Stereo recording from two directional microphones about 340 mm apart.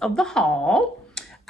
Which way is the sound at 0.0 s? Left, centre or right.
Centre.